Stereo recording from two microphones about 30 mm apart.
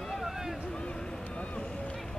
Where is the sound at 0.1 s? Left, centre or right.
Centre.